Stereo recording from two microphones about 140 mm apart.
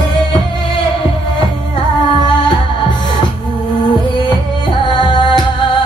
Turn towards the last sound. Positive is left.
turn(degrees=35)  # may be behind; listen again after turning